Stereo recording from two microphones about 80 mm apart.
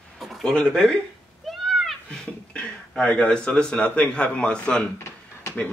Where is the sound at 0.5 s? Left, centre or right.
Centre.